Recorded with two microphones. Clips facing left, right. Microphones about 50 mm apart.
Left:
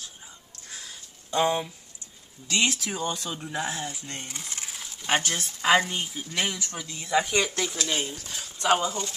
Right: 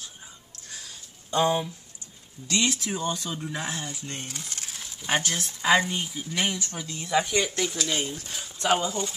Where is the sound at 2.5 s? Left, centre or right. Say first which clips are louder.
Left 1 dB; left.